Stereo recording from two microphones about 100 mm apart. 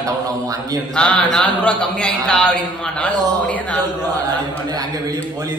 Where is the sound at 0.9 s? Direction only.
10° left (ahead or behind).